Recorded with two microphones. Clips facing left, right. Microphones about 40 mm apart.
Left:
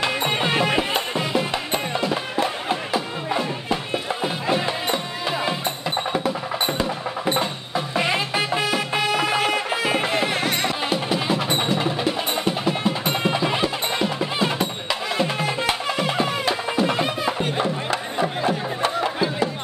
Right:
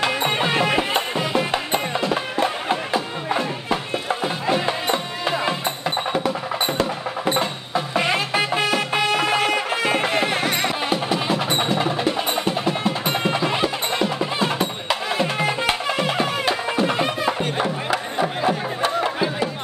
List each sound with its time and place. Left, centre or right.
0.0 s music: centre